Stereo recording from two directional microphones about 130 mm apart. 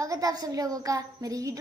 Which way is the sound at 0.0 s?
25° right (ahead or behind).